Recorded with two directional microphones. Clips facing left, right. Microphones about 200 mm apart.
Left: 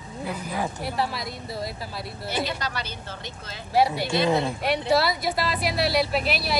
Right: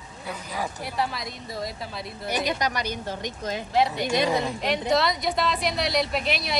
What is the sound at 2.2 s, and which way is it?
A woman's voice, 15° right (ahead or behind).